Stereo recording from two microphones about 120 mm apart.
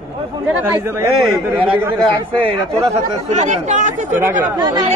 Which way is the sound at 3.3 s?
80° right.